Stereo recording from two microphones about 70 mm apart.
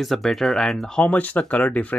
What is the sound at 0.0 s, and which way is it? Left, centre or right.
Speech, centre.